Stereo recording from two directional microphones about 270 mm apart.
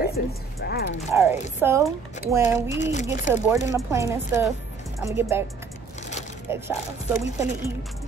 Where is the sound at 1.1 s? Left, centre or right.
Centre.